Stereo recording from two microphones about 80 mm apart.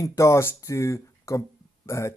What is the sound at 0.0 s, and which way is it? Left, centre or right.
Speech, left.